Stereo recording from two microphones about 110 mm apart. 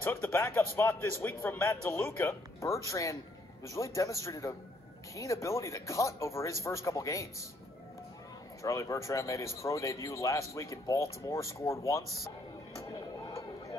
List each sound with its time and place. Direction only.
0.0 s a man's voice: 20° left (ahead or behind)
8.6 s a man's voice: 30° left (ahead or behind)
12.8 s a sound: 30° left (ahead or behind)